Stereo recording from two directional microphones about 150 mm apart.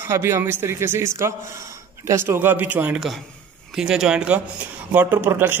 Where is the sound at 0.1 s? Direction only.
15° right (ahead or behind).